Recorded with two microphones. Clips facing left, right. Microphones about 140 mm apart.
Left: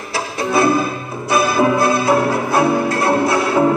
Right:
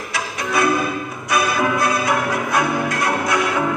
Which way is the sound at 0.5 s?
30° left (ahead or behind).